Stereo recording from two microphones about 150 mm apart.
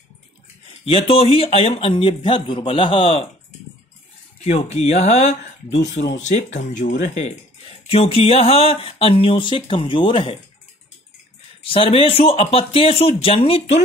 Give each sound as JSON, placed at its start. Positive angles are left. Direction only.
{"t": 0.8, "sound": "speech", "side_deg": 40}
{"t": 4.6, "sound": "speech", "side_deg": 45}
{"t": 7.9, "sound": "speech", "side_deg": 40}
{"t": 11.6, "sound": "speech", "side_deg": 35}